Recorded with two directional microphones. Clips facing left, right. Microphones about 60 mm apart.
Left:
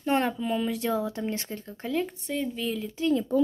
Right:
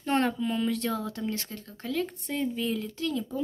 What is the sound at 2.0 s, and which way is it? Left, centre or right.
Speech, centre.